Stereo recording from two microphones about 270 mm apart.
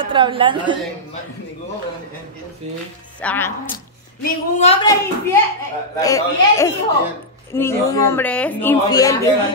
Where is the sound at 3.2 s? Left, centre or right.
Centre.